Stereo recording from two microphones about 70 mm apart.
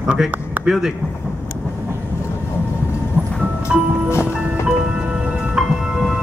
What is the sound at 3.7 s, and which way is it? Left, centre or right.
Music, centre.